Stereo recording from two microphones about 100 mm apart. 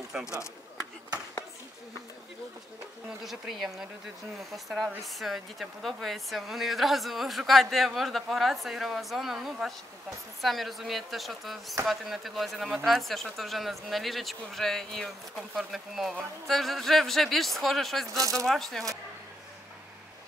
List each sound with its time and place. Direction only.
0.1 s speech: 5° right (ahead or behind)
3.2 s speech: centre (ahead or behind)
18.1 s speech: 35° right (ahead or behind)
18.5 s speech: centre (ahead or behind)